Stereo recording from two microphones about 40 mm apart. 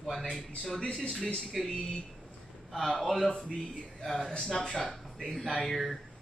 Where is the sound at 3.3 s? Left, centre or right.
Centre.